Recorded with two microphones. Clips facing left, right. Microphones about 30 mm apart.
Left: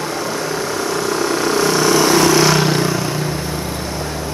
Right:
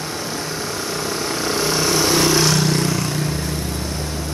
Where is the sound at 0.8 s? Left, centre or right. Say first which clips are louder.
Left 6 dB; left.